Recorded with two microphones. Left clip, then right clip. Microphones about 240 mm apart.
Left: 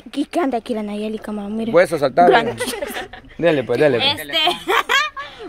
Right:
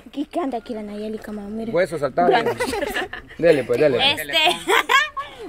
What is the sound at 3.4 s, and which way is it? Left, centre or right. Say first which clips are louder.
Speech: left 1 dB; left.